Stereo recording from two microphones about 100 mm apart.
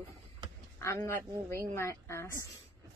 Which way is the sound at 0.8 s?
30° left (ahead or behind).